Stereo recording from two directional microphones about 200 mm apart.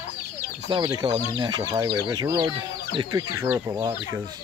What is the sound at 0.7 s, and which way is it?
Speech, 20° right (ahead or behind).